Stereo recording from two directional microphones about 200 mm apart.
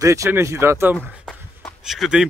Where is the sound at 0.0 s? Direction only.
15° right (ahead or behind).